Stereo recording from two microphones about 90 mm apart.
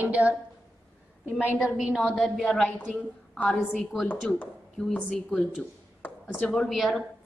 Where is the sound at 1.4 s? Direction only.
10° right (ahead or behind).